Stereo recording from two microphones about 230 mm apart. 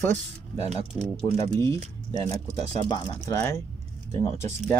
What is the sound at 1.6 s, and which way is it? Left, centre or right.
Speech, centre.